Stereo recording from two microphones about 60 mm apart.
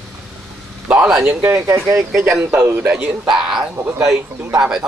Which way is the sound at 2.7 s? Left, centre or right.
Right.